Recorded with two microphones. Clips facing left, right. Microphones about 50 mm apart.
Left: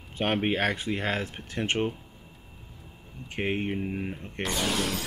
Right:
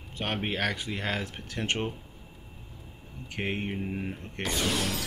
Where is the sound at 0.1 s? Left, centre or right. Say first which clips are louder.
Left 5 dB; left.